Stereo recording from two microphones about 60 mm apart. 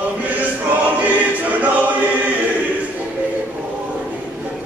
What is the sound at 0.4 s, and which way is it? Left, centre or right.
Choir, right.